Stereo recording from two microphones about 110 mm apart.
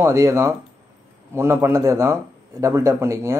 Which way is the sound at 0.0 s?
25° right (ahead or behind).